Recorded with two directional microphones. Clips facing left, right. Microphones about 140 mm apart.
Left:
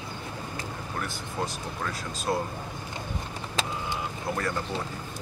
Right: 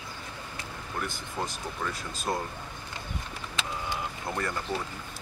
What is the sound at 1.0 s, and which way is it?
Speech, centre (ahead or behind).